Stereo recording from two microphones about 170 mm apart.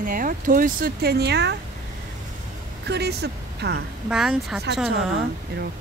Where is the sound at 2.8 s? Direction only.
75° right (ahead or behind).